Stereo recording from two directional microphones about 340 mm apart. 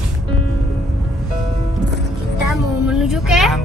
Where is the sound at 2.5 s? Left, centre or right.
Centre.